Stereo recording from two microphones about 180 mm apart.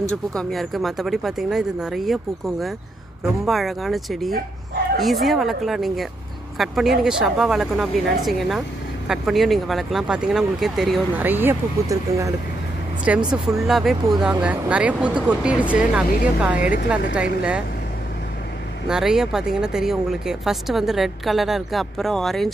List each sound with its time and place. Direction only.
0.1 s a woman's voice: 5° left (ahead or behind); by 12.4 s 15° right (ahead or behind)
13.1 s a woman's voice: 5° right (ahead or behind)
18.9 s a woman's voice: 5° right (ahead or behind)